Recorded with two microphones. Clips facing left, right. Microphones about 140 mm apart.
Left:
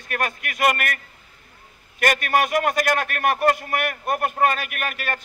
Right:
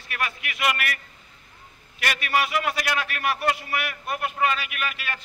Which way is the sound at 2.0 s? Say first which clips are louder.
Left 5 dB; 50° left (ahead or behind).